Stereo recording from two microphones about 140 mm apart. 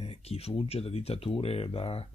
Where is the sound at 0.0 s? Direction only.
45° left (ahead or behind).